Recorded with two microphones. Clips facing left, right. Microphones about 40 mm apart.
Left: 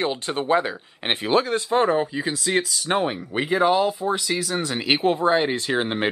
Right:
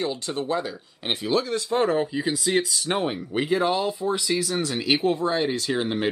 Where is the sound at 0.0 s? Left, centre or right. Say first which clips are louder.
Left 3 dB; left.